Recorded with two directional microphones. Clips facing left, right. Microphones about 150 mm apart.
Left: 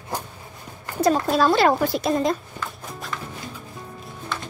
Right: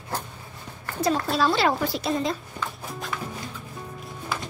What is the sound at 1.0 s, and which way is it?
Speech, 50° left (ahead or behind).